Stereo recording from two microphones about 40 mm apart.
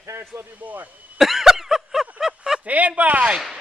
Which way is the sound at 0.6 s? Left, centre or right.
Right.